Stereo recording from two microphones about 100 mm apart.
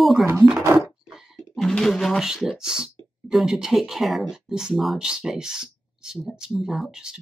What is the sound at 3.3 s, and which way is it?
Speech, 5° right (ahead or behind).